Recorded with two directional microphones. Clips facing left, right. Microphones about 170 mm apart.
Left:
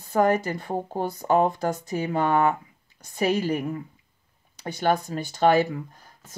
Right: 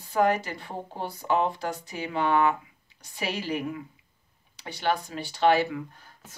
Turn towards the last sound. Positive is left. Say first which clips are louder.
# left 2 dB
turn(degrees=45)  # may be behind; listen again after turning